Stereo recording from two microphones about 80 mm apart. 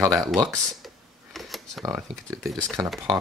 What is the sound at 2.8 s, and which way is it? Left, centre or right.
Speech, right.